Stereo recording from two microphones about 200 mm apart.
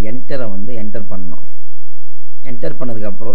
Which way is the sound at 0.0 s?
Centre (ahead or behind).